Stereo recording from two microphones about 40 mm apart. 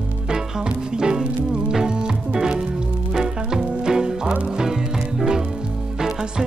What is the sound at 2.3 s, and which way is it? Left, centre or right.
Music, centre.